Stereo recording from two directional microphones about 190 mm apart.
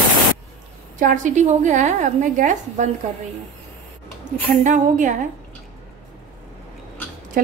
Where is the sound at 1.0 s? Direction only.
40° right (ahead or behind).